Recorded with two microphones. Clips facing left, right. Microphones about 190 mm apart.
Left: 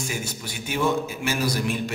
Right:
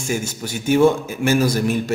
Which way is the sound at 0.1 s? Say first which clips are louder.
Right 8 dB; 45° right (ahead or behind).